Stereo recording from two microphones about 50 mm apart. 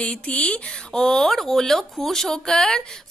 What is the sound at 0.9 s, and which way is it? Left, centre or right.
A woman's voice, centre.